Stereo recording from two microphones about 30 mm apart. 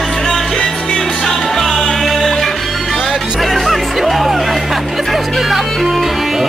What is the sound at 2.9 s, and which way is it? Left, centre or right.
Music, centre.